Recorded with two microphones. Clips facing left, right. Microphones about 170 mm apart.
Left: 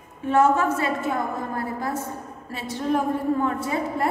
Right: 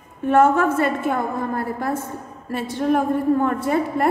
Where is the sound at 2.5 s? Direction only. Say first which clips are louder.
Right 5 dB; 55° right (ahead or behind).